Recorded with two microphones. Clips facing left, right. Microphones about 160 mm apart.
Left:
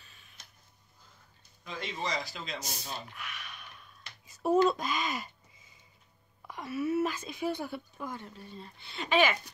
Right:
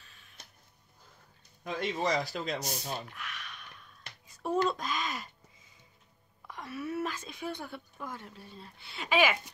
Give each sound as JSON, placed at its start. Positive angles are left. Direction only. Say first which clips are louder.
{"t": 0.0, "sound": "tick-tock", "louder": "even", "side_deg": 5}
{"t": 1.6, "sound": "a man's voice", "louder": "right 5 dB", "side_deg": -55}
{"t": 3.2, "sound": "a sound", "louder": "even", "side_deg": 5}
{"t": 4.6, "sound": "a woman's voice", "louder": "left 3 dB", "side_deg": 5}
{"t": 6.4, "sound": "a woman's voice", "louder": "left 5 dB", "side_deg": 5}